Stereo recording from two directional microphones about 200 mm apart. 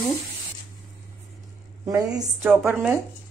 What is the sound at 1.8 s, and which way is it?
A woman's voice, 20° right (ahead or behind).